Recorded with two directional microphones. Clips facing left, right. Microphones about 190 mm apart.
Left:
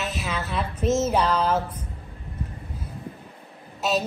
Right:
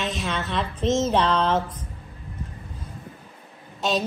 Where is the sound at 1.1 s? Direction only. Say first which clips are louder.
Right 1 dB; 5° left (ahead or behind).